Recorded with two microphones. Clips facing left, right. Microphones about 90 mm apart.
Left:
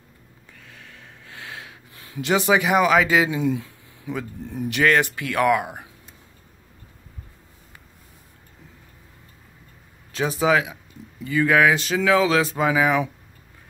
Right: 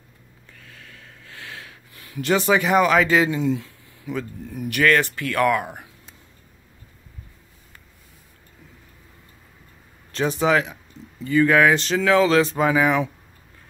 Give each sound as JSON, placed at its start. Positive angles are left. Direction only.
{"t": 0.7, "sound": "a sound", "side_deg": 20}
{"t": 4.6, "sound": "speech", "side_deg": 20}
{"t": 10.1, "sound": "speech", "side_deg": 5}